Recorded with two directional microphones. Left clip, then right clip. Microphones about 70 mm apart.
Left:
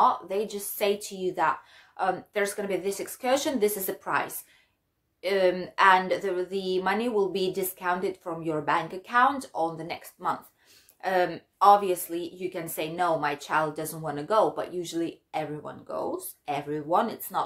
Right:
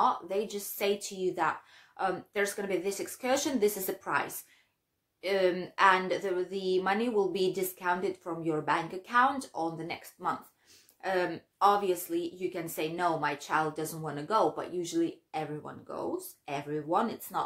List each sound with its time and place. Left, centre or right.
0.0 s a woman's voice: left
11.0 s a woman's voice: left